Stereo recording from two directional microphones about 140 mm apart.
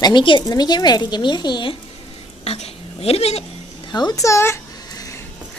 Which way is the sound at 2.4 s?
45° left (ahead or behind).